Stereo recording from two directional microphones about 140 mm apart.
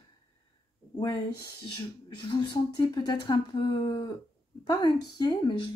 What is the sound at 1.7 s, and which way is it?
Speech, 30° left (ahead or behind).